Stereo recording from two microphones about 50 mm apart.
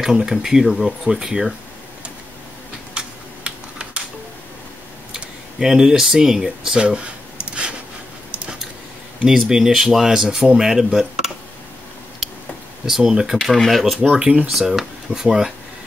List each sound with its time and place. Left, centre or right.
0.0 s speech: centre
3.4 s typing: right
5.1 s speech: centre
9.2 s speech: centre
12.2 s tick-tock: centre
12.8 s speech: centre
13.4 s speech: centre
14.1 s speech: right
14.5 s speech: centre